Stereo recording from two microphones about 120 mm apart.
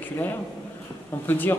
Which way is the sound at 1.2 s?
15° left (ahead or behind).